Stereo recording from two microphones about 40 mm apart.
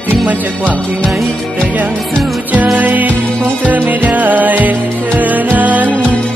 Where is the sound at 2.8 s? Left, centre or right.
Right.